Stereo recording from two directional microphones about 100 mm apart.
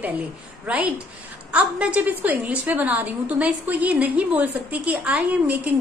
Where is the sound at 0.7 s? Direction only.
15° right (ahead or behind).